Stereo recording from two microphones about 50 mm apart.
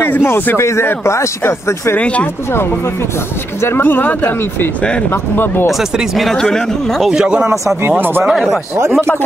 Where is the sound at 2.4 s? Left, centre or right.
Left.